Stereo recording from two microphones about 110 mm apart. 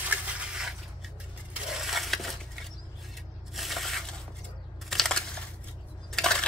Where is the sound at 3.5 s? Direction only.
Centre (ahead or behind).